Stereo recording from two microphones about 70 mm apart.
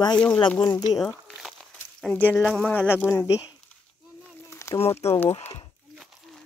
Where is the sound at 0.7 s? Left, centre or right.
Left.